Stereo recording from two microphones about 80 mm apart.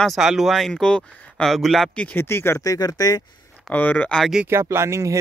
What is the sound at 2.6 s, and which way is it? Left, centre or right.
Speech, left.